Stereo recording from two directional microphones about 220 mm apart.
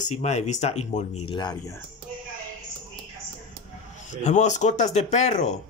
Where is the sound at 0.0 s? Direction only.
30° left (ahead or behind); by 1.8 s 15° left (ahead or behind).